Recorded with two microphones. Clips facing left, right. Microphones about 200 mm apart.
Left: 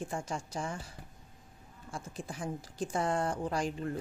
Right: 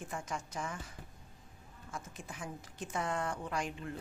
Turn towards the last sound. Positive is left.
turn(degrees=35)  # may be behind; listen again after turning